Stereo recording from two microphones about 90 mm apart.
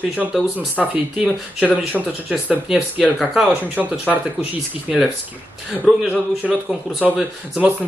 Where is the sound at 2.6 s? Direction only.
5° right (ahead or behind).